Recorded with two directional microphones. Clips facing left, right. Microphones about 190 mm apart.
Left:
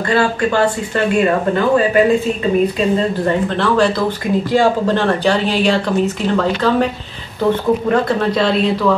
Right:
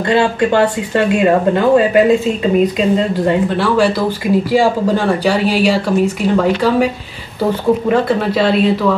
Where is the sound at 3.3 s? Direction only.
10° right (ahead or behind).